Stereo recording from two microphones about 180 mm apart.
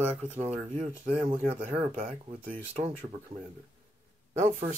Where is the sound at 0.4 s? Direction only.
35° right (ahead or behind).